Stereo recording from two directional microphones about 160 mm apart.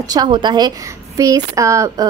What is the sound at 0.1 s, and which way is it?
A woman's voice, 25° right (ahead or behind).